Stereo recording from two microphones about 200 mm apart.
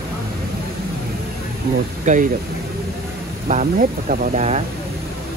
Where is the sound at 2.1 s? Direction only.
40° right (ahead or behind).